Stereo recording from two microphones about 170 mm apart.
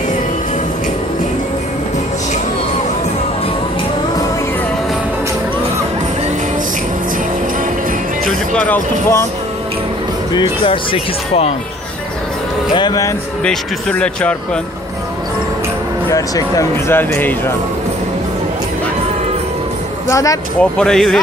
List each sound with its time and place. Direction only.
8.5 s speech: 10° left (ahead or behind)
10.3 s speech: 30° left (ahead or behind)
12.7 s speech: 25° left (ahead or behind)
13.4 s speech: 5° left (ahead or behind)
16.1 s speech: 20° left (ahead or behind)
20.1 s speech: 20° left (ahead or behind)
20.7 s speech: 5° left (ahead or behind)